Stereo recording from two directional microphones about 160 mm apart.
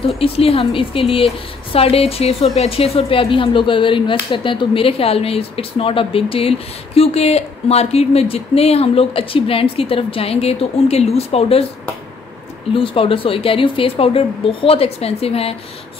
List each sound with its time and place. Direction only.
0.0 s speech: 35° left (ahead or behind)
12.7 s speech: 35° left (ahead or behind)